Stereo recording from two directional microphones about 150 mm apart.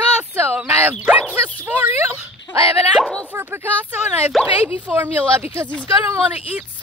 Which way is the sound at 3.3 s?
15° right (ahead or behind).